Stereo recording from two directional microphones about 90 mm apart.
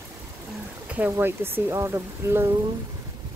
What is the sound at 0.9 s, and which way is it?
Speech, 20° right (ahead or behind).